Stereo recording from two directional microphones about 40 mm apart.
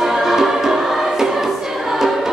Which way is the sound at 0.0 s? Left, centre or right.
Centre.